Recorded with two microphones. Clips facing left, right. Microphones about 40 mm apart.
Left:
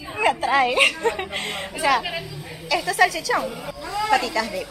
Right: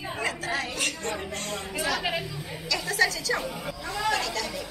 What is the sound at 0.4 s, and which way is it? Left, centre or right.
Speech, left.